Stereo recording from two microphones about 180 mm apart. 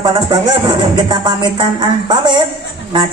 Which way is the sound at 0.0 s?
25° right (ahead or behind).